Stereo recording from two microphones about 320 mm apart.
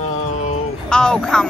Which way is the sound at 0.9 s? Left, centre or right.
Centre.